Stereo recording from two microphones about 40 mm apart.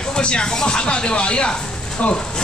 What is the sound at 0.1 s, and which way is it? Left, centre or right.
Speech, left.